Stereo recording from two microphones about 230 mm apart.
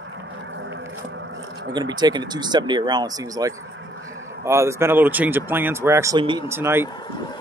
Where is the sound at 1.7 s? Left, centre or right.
Centre.